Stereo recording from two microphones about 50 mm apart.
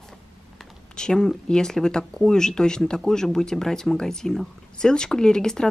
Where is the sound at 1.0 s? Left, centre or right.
Centre.